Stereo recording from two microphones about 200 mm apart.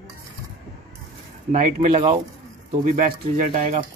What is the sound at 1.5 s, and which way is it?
Speech, 35° right (ahead or behind).